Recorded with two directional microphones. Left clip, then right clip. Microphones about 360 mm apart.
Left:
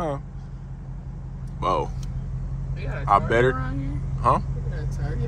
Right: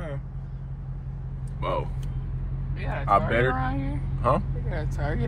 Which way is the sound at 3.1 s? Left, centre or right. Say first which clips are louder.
Left 3 dB; centre.